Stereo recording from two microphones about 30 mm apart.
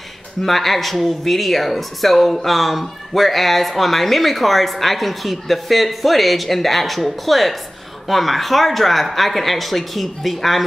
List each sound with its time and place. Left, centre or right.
0.4 s speech: centre